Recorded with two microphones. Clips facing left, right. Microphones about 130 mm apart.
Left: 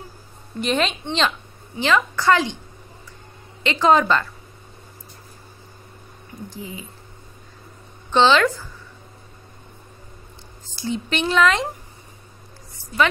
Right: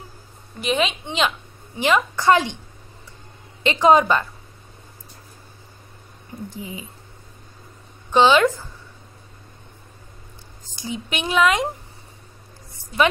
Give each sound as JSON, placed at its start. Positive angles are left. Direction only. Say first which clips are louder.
{"t": 0.6, "sound": "a woman's voice", "louder": "even", "side_deg": -5}
{"t": 3.6, "sound": "a woman's voice", "louder": "right 2 dB", "side_deg": -20}
{"t": 6.5, "sound": "speech", "louder": "left 2 dB", "side_deg": -20}
{"t": 8.1, "sound": "a woman's voice", "louder": "right 1 dB", "side_deg": -10}
{"t": 10.8, "sound": "a woman's voice", "louder": "left 4 dB", "side_deg": -10}